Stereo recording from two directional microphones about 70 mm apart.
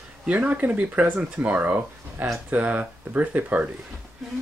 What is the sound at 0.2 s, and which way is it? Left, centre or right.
Speech, centre.